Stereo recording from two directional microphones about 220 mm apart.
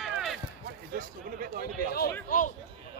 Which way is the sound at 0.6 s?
40° right (ahead or behind).